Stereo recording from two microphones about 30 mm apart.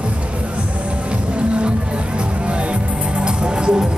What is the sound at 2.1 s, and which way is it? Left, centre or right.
Music, right.